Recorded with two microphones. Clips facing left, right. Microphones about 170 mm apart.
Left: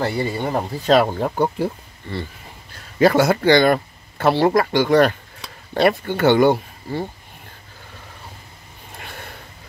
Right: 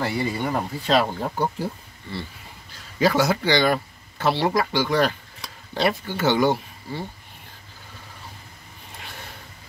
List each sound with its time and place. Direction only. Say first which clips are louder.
0.0 s speech: left 3 dB; 30° left (ahead or behind)
0.9 s speech: left 5 dB; 60° left (ahead or behind)